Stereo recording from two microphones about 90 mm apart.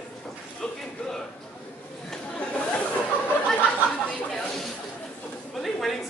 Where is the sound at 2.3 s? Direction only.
15° left (ahead or behind).